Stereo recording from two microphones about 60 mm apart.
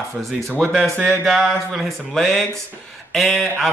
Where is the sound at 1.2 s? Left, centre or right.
Centre.